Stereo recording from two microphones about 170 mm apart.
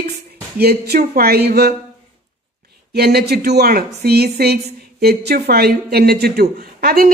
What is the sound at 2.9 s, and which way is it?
A woman's voice, 70° right (ahead or behind).